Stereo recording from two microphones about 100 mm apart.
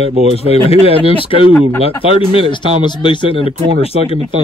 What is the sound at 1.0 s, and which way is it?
Speech, 65° left (ahead or behind).